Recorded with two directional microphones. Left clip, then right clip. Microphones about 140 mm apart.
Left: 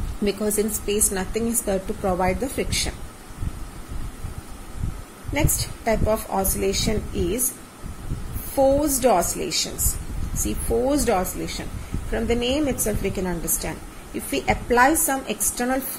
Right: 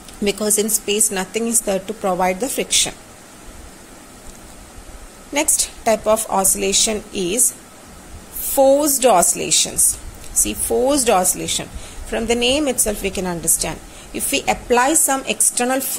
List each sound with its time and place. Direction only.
0.2 s a woman's voice: 20° right (ahead or behind)
5.3 s a woman's voice: 20° right (ahead or behind)
8.5 s a woman's voice: 20° right (ahead or behind)